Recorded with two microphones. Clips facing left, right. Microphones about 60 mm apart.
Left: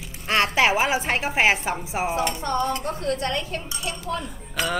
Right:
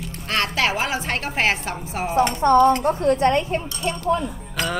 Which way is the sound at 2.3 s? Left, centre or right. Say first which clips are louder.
Right 10 dB; right.